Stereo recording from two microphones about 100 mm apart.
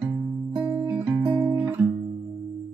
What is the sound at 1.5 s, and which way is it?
Guitar, 25° right (ahead or behind).